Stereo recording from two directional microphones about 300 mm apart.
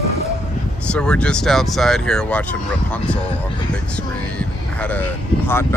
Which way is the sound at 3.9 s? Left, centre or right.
Centre.